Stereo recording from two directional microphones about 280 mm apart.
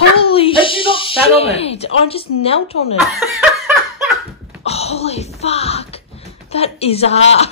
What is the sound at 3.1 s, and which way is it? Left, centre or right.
Chuckle, centre.